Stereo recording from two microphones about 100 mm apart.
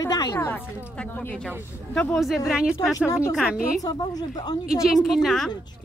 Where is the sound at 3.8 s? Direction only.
40° left (ahead or behind).